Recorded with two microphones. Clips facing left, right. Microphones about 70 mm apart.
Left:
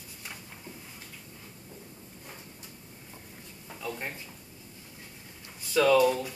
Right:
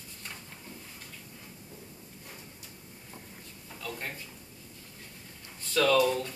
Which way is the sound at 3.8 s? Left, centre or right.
Centre.